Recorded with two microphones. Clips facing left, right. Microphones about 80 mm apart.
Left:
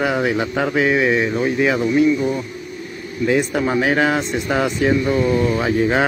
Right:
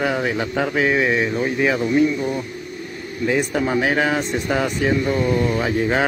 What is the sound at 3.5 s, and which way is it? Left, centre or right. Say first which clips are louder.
Speech: left 2 dB; centre.